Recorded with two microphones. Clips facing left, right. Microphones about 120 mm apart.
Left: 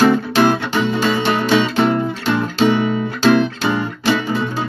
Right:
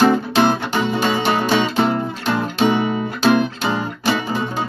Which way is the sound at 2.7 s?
15° right (ahead or behind).